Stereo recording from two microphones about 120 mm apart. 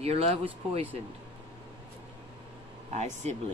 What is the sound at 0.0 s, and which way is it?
Speech, 60° right (ahead or behind).